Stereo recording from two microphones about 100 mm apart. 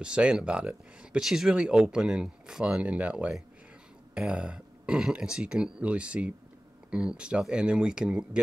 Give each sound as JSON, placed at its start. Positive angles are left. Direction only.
{"t": 0.0, "sound": "speech", "side_deg": -10}